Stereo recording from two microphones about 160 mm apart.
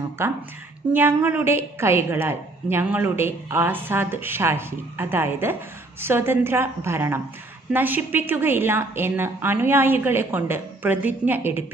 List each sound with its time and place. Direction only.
0.2 s a woman's voice: 15° right (ahead or behind)